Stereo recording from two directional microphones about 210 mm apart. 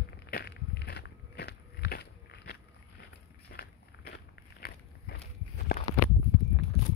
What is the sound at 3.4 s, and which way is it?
Biting, 50° left (ahead or behind).